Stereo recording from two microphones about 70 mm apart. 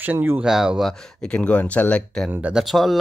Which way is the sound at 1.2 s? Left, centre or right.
Centre.